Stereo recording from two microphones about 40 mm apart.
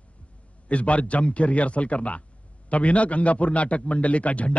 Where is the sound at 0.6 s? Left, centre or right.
Left.